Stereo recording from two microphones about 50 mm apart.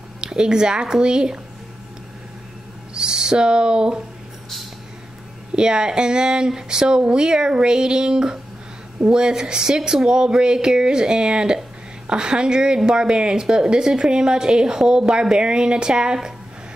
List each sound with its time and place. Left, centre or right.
0.2 s speech: centre
2.9 s owl: centre
5.6 s speech: centre